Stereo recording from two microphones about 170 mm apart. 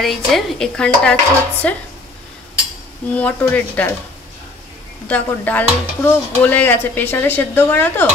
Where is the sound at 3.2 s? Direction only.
10° left (ahead or behind).